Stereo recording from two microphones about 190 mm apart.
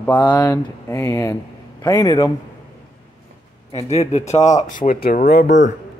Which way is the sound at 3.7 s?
35° left (ahead or behind).